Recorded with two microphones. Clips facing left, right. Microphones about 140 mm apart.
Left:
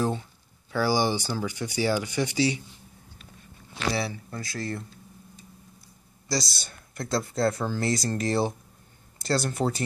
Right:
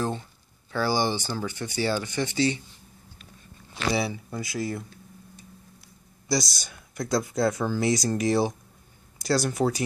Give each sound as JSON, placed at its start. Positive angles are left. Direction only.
{"t": 0.7, "sound": "speech", "side_deg": 10}
{"t": 3.9, "sound": "speech", "side_deg": -15}
{"t": 6.2, "sound": "speech", "side_deg": -20}
{"t": 6.7, "sound": "speech", "side_deg": 0}
{"t": 7.7, "sound": "speech", "side_deg": -15}